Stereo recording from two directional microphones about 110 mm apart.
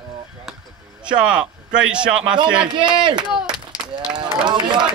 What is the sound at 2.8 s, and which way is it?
Speech, 45° right (ahead or behind).